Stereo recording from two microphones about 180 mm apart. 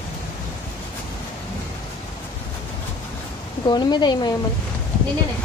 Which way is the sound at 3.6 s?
25° left (ahead or behind).